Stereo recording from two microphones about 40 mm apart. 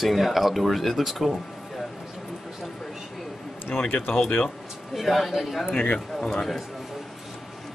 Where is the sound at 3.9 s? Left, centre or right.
Left.